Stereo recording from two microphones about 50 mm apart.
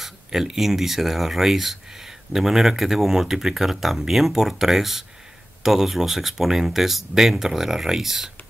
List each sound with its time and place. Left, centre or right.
0.0 s speech: centre